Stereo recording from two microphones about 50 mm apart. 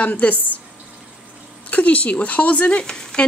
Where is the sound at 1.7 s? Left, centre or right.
Left.